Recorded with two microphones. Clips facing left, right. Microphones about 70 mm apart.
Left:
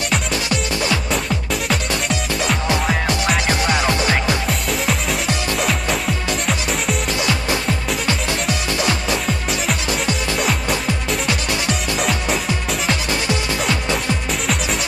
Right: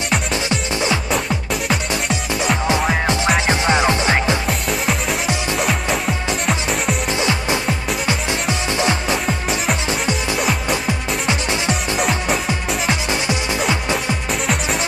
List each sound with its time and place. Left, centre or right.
0.3 s music: right
1.1 s music: centre
3.4 s music: right
4.5 s music: centre
7.1 s music: right
10.3 s music: centre